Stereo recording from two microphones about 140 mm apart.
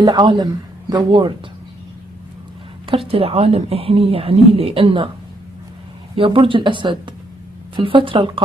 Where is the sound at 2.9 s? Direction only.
45° right (ahead or behind).